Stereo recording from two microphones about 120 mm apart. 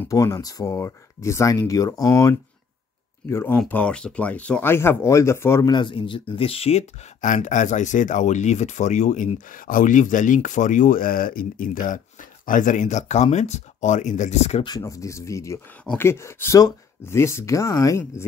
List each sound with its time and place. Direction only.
0.1 s speech: 25° left (ahead or behind)
5.7 s speech: 40° left (ahead or behind); by 10.9 s 90° left
11.9 s speech: 90° left; by 14.6 s 65° left (ahead or behind)
14.8 s speech: 25° left (ahead or behind)
15.8 s speech: 10° left (ahead or behind)
16.1 s speech: 20° left (ahead or behind)